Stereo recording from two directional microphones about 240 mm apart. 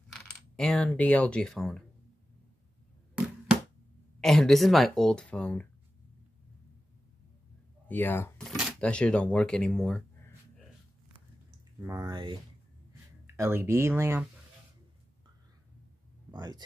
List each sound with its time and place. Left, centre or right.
0.1 s coin: centre
4.2 s speech: centre
7.9 s speech: centre
11.8 s speech: centre
13.4 s speech: centre
16.3 s speech: centre